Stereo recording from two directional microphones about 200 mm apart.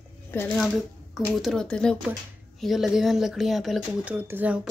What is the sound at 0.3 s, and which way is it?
Speech, 10° left (ahead or behind).